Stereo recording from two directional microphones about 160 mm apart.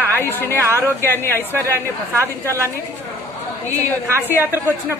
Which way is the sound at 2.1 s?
15° right (ahead or behind).